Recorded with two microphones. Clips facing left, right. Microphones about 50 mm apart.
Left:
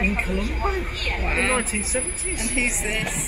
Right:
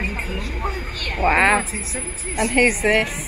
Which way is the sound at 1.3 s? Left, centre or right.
Right.